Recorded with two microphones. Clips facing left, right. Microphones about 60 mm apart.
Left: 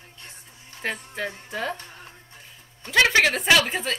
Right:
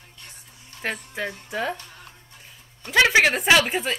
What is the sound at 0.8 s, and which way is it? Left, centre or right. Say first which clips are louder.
Speech: right 1 dB; centre.